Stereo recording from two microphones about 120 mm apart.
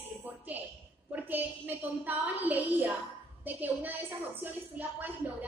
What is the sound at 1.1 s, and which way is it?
A woman's voice, 15° right (ahead or behind).